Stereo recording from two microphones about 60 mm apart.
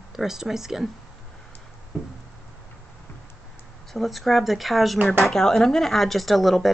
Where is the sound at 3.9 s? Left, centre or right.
Centre.